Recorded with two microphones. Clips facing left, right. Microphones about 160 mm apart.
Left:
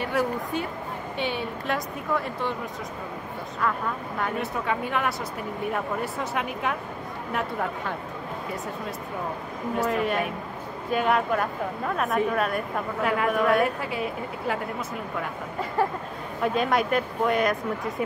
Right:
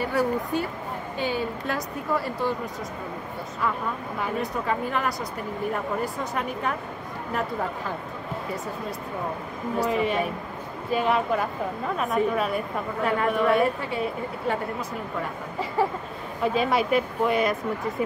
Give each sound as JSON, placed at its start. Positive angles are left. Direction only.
{"t": 0.0, "sound": "a woman's voice", "side_deg": 0}
{"t": 1.1, "sound": "speech", "side_deg": 65}
{"t": 1.7, "sound": "a woman's voice", "side_deg": 0}
{"t": 4.2, "sound": "a woman's voice", "side_deg": 0}
{"t": 6.3, "sound": "a woman's voice", "side_deg": 0}
{"t": 9.8, "sound": "a woman's voice", "side_deg": 0}
{"t": 16.4, "sound": "a woman's voice", "side_deg": 0}